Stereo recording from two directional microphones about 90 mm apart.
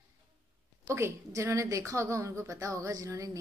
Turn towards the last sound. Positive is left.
turn(degrees=-40)  # may be behind; listen again after turning